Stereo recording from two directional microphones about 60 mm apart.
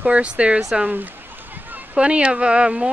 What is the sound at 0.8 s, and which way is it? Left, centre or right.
Speech, right.